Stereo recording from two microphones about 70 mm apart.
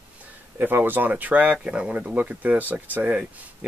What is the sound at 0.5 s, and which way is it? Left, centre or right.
Speech, right.